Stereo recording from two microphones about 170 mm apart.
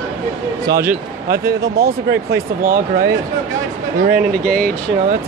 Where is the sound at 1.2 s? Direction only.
65° right (ahead or behind).